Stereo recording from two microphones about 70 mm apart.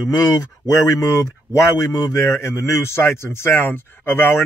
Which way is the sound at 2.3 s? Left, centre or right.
Left.